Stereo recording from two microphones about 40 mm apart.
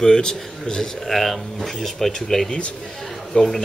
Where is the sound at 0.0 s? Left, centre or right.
Centre.